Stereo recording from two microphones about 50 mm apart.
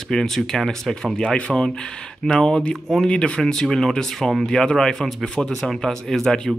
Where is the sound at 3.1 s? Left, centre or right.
Centre.